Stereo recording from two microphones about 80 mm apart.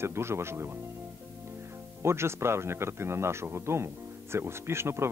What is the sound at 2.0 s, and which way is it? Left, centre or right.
Speech, right.